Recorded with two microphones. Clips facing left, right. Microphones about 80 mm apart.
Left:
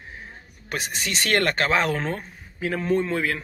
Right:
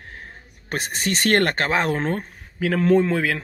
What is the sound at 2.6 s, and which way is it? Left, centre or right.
Speech, right.